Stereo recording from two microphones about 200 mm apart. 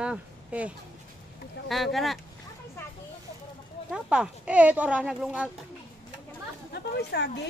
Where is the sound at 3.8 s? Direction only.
5° right (ahead or behind).